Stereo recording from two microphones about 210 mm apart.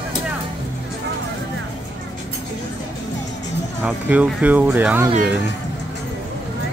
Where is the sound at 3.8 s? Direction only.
5° right (ahead or behind).